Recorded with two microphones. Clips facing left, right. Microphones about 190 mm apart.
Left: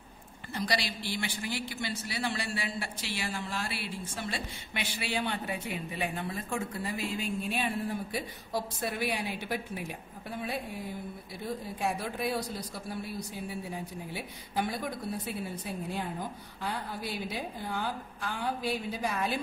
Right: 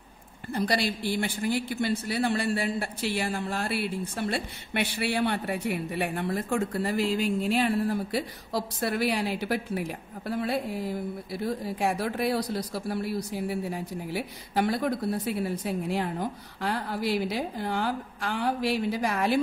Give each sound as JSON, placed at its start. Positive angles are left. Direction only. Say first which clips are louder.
{"t": 0.5, "sound": "speech", "louder": "right 6 dB", "side_deg": -55}